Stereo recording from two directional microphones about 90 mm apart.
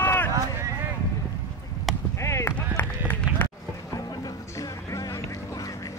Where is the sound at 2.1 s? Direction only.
30° left (ahead or behind).